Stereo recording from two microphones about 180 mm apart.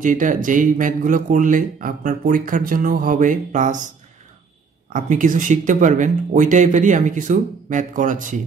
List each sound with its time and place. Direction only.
0.0 s speech: 45° right (ahead or behind)